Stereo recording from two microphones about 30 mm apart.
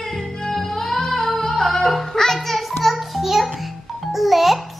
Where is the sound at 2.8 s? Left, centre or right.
Centre.